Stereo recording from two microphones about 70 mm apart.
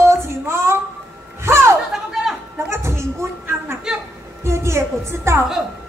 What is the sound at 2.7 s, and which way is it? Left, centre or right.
Music, right.